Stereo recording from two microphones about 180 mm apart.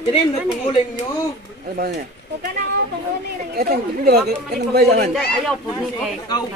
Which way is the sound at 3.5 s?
60° right (ahead or behind).